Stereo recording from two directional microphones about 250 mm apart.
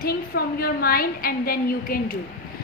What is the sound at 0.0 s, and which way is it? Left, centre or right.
A woman's voice, left.